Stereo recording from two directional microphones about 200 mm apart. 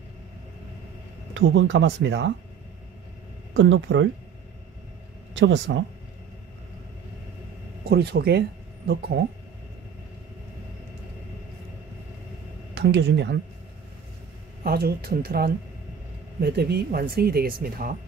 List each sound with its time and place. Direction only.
1.3 s speech: 70° right (ahead or behind)
3.5 s speech: 70° right (ahead or behind)
5.3 s speech: 65° right (ahead or behind)
7.9 s speech: 50° right (ahead or behind)
12.7 s speech: 55° right (ahead or behind)
14.6 s speech: 50° right (ahead or behind)